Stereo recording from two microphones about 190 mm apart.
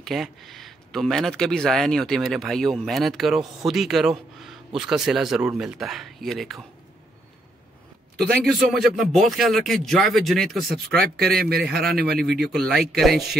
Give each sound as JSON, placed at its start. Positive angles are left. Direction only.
{"t": 0.0, "sound": "speech", "side_deg": 0}
{"t": 8.5, "sound": "speech", "side_deg": 0}
{"t": 11.0, "sound": "a man's voice", "side_deg": -55}
{"t": 12.3, "sound": "speech", "side_deg": 0}